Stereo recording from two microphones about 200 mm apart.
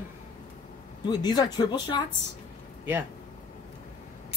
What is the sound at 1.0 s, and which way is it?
Speech, 20° left (ahead or behind).